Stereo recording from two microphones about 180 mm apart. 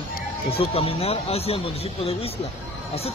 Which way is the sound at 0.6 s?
35° left (ahead or behind).